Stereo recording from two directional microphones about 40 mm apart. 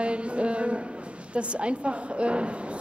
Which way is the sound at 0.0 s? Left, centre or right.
Right.